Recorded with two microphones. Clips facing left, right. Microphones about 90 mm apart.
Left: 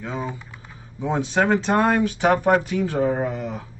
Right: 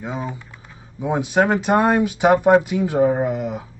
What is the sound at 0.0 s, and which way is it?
Speech, 15° right (ahead or behind).